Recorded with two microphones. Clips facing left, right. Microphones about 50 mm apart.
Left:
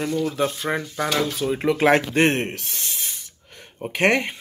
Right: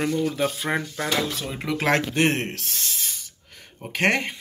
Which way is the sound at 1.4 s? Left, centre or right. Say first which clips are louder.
Left 6 dB; centre.